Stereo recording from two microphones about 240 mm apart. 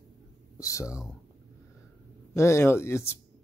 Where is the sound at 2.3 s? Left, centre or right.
Centre.